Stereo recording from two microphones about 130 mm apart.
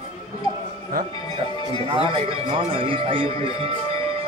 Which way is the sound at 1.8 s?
40° right (ahead or behind).